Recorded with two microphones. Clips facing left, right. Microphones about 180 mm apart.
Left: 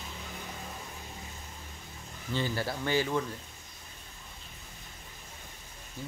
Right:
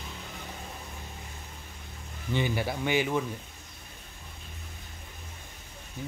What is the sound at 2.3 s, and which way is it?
Speech, 15° right (ahead or behind).